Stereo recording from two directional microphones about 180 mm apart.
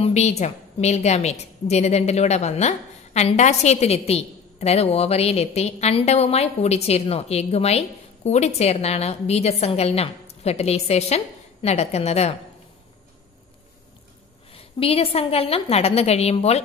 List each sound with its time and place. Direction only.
0.0 s a woman's voice: 40° left (ahead or behind)
14.5 s a woman's voice: 30° left (ahead or behind)